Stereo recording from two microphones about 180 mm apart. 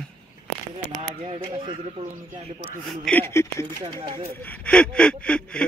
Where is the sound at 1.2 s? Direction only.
30° right (ahead or behind).